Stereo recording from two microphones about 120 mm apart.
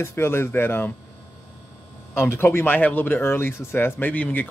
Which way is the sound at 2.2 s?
20° left (ahead or behind).